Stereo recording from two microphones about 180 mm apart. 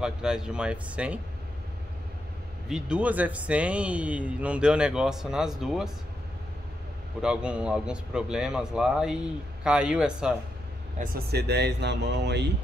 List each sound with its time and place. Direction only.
0.0 s speech: 5° right (ahead or behind)
2.7 s speech: 5° right (ahead or behind)
7.2 s speech: 5° right (ahead or behind)
11.3 s speech: 65° right (ahead or behind)